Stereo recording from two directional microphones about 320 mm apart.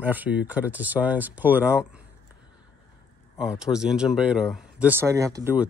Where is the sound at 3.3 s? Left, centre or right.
Centre.